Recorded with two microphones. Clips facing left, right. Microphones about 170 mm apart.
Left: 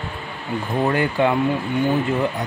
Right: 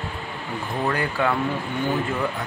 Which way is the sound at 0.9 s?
20° left (ahead or behind).